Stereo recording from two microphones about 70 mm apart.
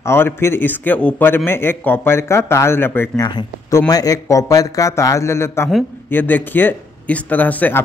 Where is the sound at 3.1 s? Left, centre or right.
Left.